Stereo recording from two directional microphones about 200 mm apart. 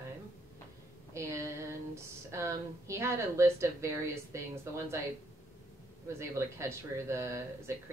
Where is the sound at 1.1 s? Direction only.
15° right (ahead or behind).